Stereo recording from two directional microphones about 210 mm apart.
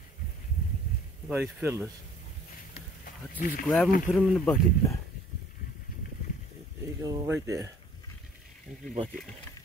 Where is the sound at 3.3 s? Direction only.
40° left (ahead or behind).